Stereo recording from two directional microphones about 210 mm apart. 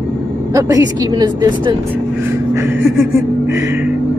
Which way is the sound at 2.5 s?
10° right (ahead or behind).